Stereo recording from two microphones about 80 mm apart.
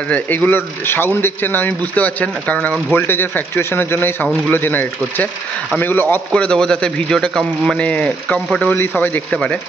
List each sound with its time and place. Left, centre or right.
0.1 s speech: centre
2.9 s speech: left
6.3 s speech: centre
7.8 s speech: centre
8.7 s speech: left